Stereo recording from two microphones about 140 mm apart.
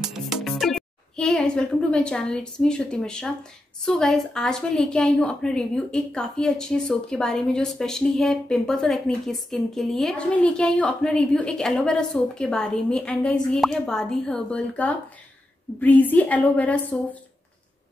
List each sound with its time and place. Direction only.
0.1 s music: centre (ahead or behind)
3.8 s a woman's voice: 5° left (ahead or behind)